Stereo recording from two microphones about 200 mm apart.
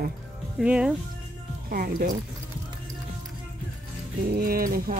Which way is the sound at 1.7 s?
45° right (ahead or behind).